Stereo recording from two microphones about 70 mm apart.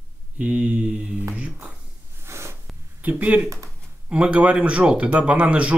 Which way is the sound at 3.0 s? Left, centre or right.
Right.